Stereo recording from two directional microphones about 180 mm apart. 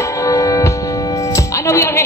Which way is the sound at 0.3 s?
20° left (ahead or behind).